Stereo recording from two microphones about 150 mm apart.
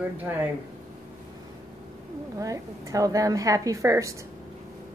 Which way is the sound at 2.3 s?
20° right (ahead or behind).